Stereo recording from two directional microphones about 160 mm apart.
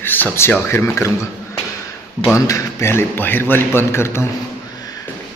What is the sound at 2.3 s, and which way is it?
A man's voice, 20° left (ahead or behind).